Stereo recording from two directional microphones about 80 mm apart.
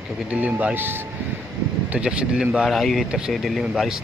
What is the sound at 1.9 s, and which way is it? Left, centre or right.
Speech, centre.